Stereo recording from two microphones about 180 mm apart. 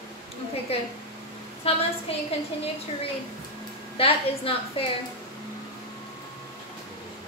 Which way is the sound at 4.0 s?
30° left (ahead or behind).